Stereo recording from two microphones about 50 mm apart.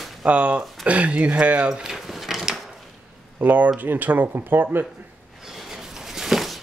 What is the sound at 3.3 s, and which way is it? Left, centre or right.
Speech, right.